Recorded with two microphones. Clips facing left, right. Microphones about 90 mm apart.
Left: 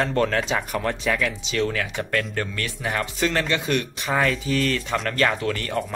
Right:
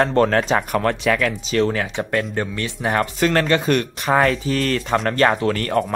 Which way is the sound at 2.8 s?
45° right (ahead or behind).